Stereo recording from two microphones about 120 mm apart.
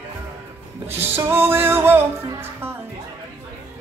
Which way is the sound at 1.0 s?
20° right (ahead or behind).